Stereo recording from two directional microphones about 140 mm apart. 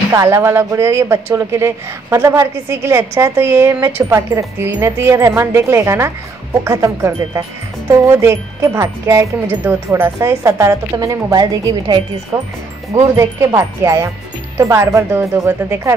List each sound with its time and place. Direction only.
0.1 s speech: 20° right (ahead or behind)